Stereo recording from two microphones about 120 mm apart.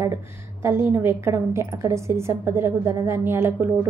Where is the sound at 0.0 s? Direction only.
20° right (ahead or behind).